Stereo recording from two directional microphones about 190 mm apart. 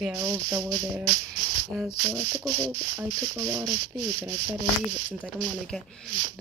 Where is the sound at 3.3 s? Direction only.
20° right (ahead or behind).